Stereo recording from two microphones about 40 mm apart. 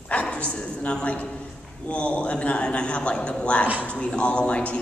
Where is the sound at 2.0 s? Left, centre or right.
Left.